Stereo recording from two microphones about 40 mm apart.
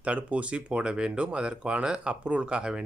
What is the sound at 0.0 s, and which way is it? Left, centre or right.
Speech, right.